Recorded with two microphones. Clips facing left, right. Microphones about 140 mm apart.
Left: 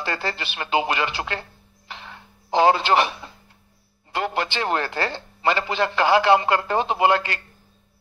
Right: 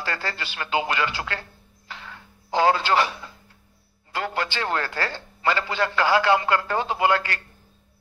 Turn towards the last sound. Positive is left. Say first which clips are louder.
# left 2 dB
turn(degrees=20)  # may be behind; listen again after turning